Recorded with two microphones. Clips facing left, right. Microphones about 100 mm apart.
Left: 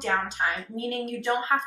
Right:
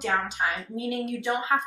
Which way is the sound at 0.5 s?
5° right (ahead or behind).